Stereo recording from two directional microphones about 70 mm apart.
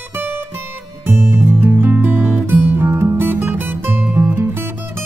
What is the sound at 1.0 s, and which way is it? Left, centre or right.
Music, right.